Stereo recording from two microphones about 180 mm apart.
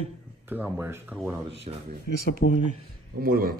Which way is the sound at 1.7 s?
30° right (ahead or behind).